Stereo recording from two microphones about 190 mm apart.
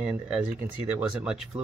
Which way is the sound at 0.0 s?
5° right (ahead or behind).